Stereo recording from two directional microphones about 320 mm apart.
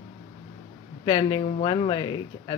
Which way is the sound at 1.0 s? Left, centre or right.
Centre.